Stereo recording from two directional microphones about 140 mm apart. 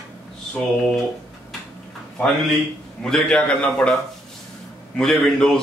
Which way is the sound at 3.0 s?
5° left (ahead or behind).